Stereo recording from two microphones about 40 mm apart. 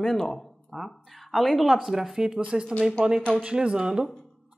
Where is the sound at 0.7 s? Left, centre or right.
Centre.